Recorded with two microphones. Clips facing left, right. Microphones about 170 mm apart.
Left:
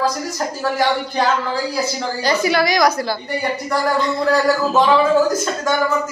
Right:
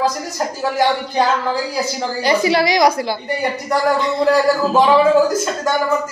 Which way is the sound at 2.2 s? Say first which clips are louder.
Right 2 dB; 25° right (ahead or behind).